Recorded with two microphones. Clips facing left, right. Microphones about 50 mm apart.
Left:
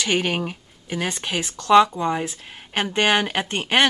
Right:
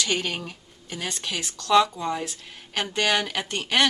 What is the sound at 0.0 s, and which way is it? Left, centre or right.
Speech, left.